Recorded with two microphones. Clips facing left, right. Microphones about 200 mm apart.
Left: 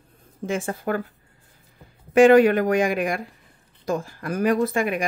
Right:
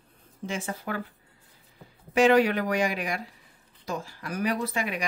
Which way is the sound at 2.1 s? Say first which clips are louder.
Left 7 dB; 50° left (ahead or behind).